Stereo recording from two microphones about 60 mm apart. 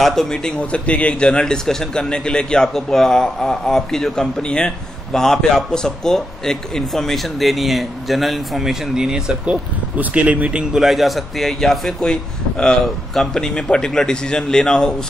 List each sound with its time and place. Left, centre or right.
0.0 s a man's voice: centre
9.9 s speech: right
10.7 s a man's voice: centre